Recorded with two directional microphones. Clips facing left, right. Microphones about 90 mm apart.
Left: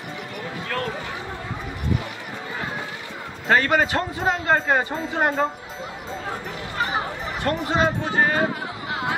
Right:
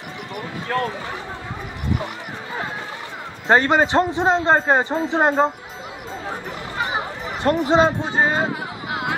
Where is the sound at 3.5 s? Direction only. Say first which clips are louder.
Right 3 dB; 25° right (ahead or behind).